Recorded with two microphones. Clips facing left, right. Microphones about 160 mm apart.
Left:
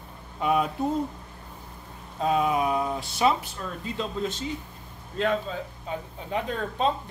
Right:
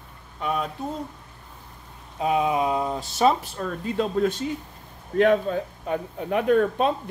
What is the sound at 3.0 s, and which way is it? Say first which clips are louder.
Speech: right 5 dB; 40° right (ahead or behind).